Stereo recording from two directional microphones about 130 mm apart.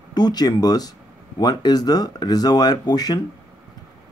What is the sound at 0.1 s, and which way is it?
Speech, 30° left (ahead or behind).